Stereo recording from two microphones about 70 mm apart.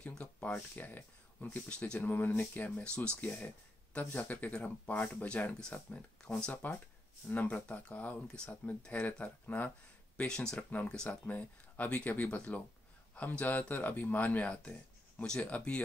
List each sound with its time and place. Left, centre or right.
0.2 s speech: left
10.1 s speech: centre